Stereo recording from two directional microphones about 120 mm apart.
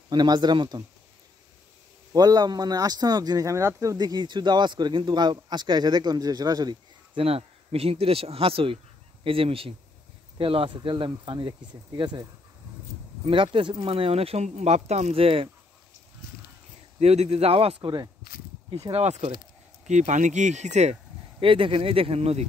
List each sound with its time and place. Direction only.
0.1 s speech: 35° right (ahead or behind)
2.1 s speech: 35° right (ahead or behind)
7.2 s speech: 55° right (ahead or behind)
17.0 s speech: 60° right (ahead or behind); by 18.1 s 40° right (ahead or behind)
18.9 s speech: 60° right (ahead or behind)
19.9 s speech: 85° right; by 21.0 s 70° right (ahead or behind)
21.4 s speech: 45° right (ahead or behind)